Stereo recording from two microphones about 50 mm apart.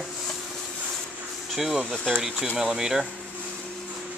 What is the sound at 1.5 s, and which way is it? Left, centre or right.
Speech, centre.